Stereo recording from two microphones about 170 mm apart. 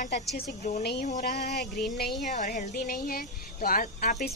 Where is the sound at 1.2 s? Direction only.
65° left (ahead or behind).